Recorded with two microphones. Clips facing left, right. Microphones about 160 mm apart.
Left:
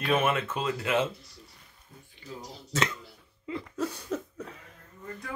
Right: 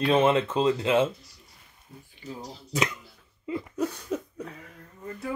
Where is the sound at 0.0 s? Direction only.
25° right (ahead or behind).